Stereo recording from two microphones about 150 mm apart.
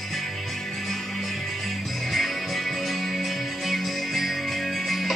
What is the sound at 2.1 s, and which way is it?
Music, centre (ahead or behind).